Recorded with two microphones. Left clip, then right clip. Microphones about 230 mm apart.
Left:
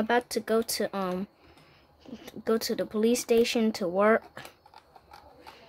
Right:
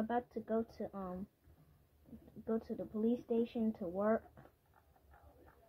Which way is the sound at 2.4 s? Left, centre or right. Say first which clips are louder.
Left 13 dB; left.